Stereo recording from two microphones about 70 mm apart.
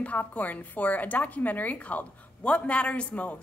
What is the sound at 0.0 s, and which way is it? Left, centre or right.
A woman's voice, left.